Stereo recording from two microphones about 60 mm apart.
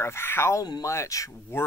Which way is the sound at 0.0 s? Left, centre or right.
Left.